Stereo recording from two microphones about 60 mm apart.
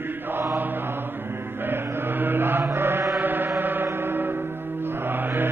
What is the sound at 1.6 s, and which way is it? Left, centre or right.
Mantra, right.